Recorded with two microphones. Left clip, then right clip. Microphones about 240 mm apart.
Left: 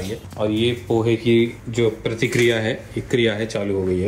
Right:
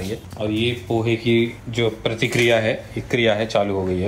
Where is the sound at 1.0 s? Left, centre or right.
Centre.